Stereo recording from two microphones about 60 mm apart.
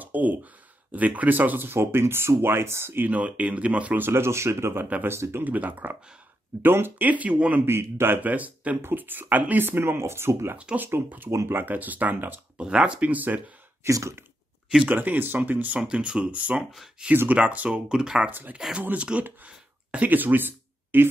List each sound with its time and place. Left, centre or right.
0.0 s a sound: right
0.9 s speech: right
3.1 s speech: right
4.0 s speech: right
5.4 s speech: right
7.1 s speech: right
7.6 s speech: right
11.2 s speech: right
11.6 s speech: right
12.5 s speech: centre
13.8 s a sound: right
14.9 s speech: right
15.8 s speech: centre
18.3 s speech: right